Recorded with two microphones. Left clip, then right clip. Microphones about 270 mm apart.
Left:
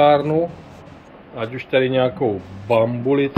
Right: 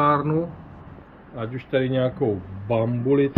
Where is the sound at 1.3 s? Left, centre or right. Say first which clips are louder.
Left 5 dB; centre.